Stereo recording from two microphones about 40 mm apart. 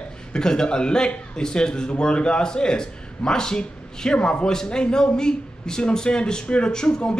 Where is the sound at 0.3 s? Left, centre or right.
Centre.